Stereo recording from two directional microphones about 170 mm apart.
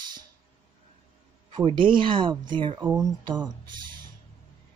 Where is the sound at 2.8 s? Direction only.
10° right (ahead or behind).